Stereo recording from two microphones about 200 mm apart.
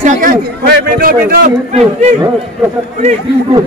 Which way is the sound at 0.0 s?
40° right (ahead or behind).